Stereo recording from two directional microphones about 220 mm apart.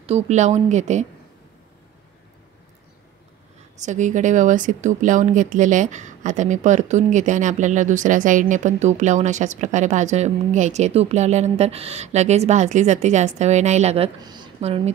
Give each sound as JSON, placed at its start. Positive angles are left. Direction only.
{"t": 0.0, "sound": "speech", "side_deg": -30}
{"t": 3.8, "sound": "speech", "side_deg": -35}